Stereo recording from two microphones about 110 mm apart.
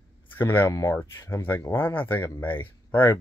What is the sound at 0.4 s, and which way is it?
Speech, 20° left (ahead or behind).